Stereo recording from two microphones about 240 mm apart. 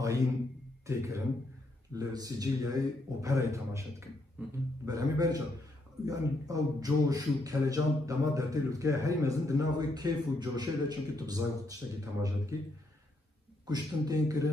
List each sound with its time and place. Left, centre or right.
0.8 s a man's voice: centre
13.7 s a man's voice: centre